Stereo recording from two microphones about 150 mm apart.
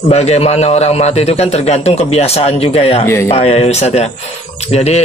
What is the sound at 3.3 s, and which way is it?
Speech, 45° left (ahead or behind).